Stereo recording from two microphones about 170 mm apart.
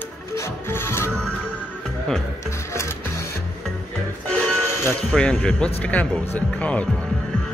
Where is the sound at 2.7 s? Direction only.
15° left (ahead or behind).